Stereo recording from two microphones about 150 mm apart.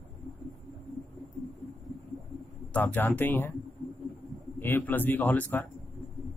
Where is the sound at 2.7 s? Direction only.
10° left (ahead or behind).